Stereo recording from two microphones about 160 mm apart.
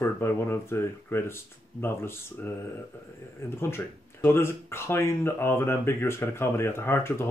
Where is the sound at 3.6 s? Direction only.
15° left (ahead or behind).